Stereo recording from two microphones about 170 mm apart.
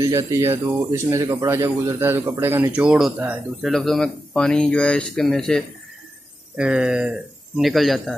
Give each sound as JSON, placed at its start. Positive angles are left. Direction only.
{"t": 0.0, "sound": "speech", "side_deg": -20}